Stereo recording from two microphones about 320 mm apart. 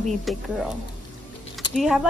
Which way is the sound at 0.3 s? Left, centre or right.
Centre.